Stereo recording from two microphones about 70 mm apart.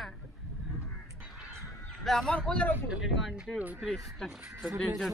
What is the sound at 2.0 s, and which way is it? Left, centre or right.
Speech, centre.